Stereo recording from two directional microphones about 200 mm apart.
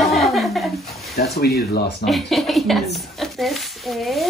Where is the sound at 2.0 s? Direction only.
Centre (ahead or behind).